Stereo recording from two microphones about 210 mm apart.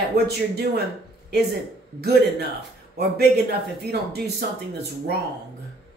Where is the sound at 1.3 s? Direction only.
50° right (ahead or behind).